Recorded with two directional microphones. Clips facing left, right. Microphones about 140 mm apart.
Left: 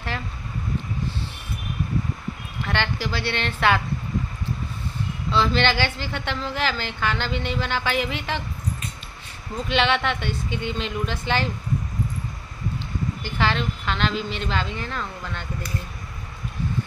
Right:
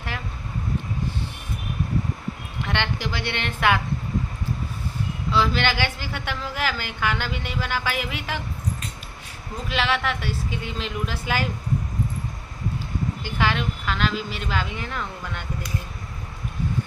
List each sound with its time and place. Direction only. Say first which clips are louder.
2.6 s a woman's voice: left 1 dB; 20° right (ahead or behind)
5.3 s a woman's voice: left 1 dB; 10° right (ahead or behind)
9.7 s a woman's voice: left 3 dB; 5° right (ahead or behind)
13.2 s a woman's voice: left 1 dB; 10° right (ahead or behind)